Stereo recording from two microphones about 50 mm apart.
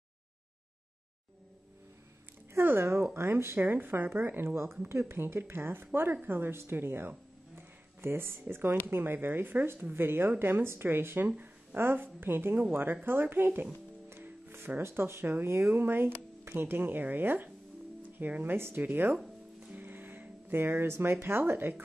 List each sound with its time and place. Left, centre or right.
2.5 s speech: right
3.5 s speech: right
7.5 s a sound: right
8.8 s speech: right
14.0 s music: right
15.4 s speech: right